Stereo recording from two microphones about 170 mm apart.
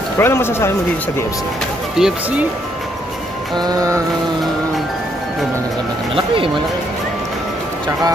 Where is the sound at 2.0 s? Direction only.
5° right (ahead or behind).